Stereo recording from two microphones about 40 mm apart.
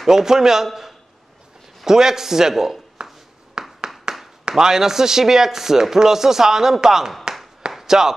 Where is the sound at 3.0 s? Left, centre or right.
Centre.